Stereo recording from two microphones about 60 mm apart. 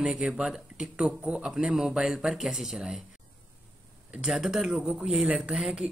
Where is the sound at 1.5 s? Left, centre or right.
Centre.